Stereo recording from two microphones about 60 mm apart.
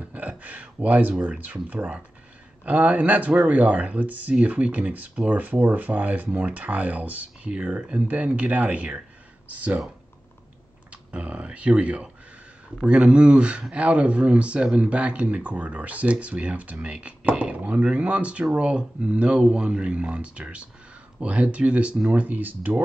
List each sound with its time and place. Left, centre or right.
0.0 s speech: right
10.9 s speech: right